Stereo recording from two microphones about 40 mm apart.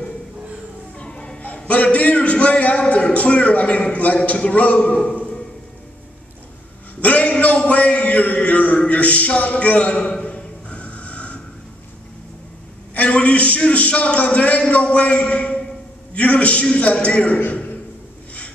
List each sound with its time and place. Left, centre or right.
0.9 s music: left
1.7 s a man's voice: left
7.0 s a sound: left
8.7 s speech: left
10.2 s a sound: left
12.9 s a man's voice: left